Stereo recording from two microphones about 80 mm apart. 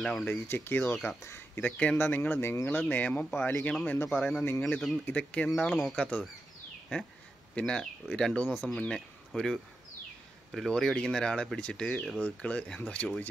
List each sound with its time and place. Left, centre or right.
0.0 s speech: centre
0.3 s speech: left
1.8 s speech: left
4.2 s speech: centre
4.5 s speech: centre
5.6 s speech: centre
5.9 s speech: centre
7.5 s speech: centre